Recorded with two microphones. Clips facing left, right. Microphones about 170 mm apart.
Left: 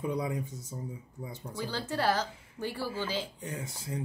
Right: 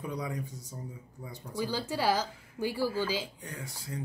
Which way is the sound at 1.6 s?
10° right (ahead or behind).